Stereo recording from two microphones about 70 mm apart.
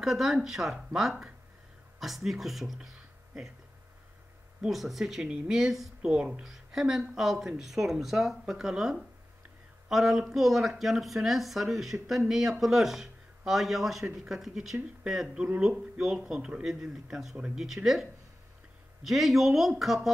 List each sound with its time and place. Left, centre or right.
0.0 s speech: centre
4.6 s speech: centre
15.3 s speech: centre
15.6 s speech: centre
19.0 s speech: centre